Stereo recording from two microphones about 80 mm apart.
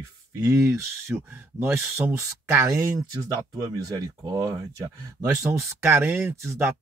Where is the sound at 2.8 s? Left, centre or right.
Right.